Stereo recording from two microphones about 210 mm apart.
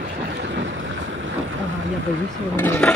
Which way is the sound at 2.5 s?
10° left (ahead or behind).